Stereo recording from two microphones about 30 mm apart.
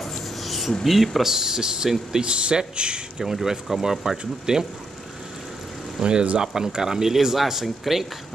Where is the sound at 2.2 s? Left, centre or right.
Right.